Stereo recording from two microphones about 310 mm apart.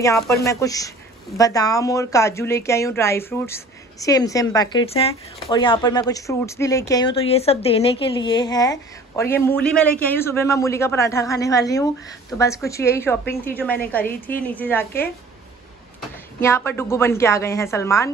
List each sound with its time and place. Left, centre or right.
0.0 s a woman's voice: centre
16.3 s speech: centre